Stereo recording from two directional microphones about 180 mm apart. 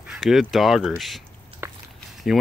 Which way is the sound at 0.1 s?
Centre (ahead or behind).